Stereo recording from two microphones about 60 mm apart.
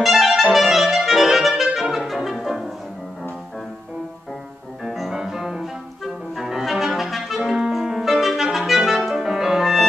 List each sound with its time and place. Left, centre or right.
0.0 s clarinet: centre
5.1 s music: centre
6.3 s clarinet: centre